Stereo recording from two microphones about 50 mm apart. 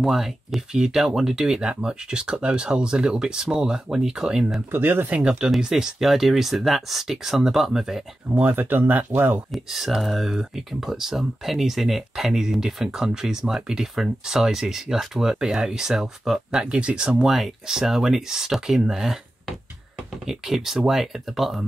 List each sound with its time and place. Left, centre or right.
0.0 s speech: centre
4.6 s speech: right
5.6 s speech: centre
8.4 s speech: right
9.5 s speech: centre
17.2 s speech: centre